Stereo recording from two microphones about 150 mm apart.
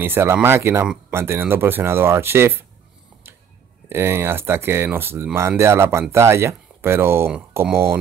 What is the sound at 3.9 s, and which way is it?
Speech, 15° right (ahead or behind).